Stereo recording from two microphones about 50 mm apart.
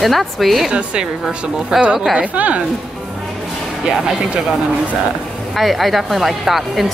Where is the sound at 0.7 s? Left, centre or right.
Right.